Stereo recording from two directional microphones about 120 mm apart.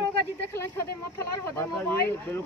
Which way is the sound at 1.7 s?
15° left (ahead or behind).